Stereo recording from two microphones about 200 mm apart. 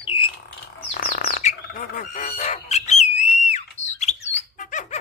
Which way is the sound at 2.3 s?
35° left (ahead or behind).